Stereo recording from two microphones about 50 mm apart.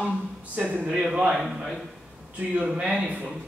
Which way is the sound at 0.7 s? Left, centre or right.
Right.